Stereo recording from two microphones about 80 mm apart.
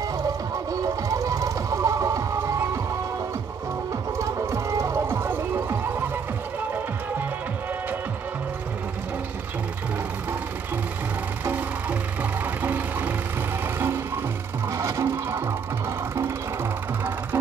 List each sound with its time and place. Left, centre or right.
0.8 s music: right
4.2 s music: right
11.4 s music: right
14.7 s music: right